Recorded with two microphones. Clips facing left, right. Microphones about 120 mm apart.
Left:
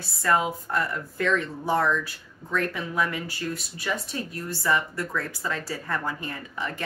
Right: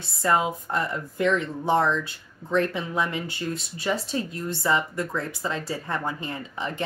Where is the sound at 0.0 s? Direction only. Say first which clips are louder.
Right 1 dB; 20° right (ahead or behind).